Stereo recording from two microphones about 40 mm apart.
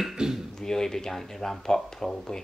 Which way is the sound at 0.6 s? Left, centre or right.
Centre.